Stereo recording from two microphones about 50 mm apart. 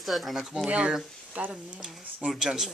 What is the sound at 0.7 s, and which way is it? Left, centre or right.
Speech, centre.